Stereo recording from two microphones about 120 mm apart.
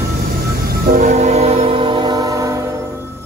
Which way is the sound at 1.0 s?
65° right (ahead or behind).